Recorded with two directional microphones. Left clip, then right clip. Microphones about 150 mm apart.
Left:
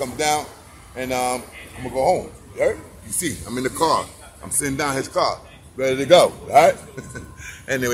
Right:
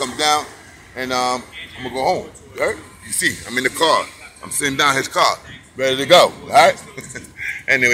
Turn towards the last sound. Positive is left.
turn(degrees=10)  # may be behind; listen again after turning